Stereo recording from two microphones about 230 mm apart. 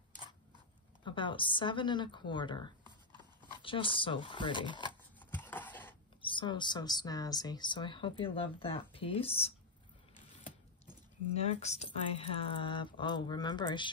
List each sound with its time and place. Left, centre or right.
1.0 s a woman's voice: left
5.3 s a sound: centre
6.2 s a woman's voice: left
11.3 s a woman's voice: left